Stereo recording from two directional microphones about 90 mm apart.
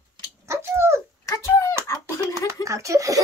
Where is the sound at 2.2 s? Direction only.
35° right (ahead or behind).